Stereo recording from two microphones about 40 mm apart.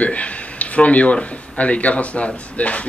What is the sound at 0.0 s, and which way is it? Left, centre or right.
A man's voice, left.